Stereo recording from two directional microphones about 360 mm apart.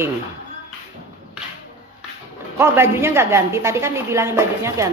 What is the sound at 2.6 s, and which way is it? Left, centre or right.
A woman's voice, centre.